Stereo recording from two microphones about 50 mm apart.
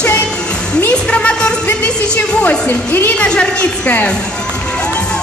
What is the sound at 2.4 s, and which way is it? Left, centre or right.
Speech, left.